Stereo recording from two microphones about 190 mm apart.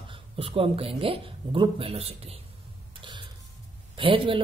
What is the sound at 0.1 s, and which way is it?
Speech, 30° right (ahead or behind).